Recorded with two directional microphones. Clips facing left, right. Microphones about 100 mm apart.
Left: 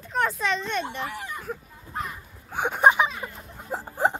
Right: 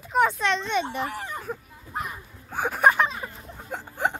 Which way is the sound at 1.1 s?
40° right (ahead or behind).